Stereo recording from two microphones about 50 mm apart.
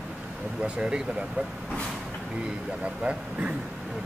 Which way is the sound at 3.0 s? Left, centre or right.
Right.